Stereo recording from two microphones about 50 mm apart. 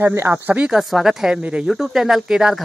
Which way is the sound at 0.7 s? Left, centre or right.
Centre.